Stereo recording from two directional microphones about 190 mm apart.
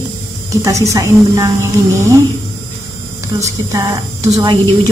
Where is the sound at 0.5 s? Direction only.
15° right (ahead or behind).